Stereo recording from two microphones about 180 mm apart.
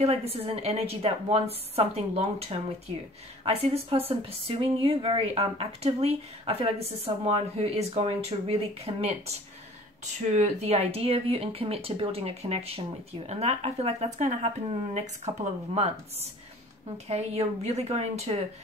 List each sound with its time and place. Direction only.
0.0 s speech: 35° right (ahead or behind)
10.3 s speech: 40° right (ahead or behind)
16.9 s speech: 35° right (ahead or behind)